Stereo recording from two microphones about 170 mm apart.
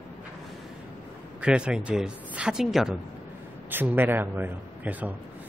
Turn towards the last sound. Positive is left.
turn(degrees=-10)  # may be behind; listen again after turning